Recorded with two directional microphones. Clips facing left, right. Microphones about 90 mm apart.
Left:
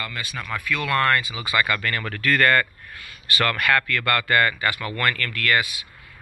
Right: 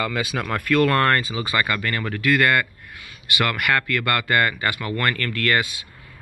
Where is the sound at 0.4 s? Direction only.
60° right (ahead or behind).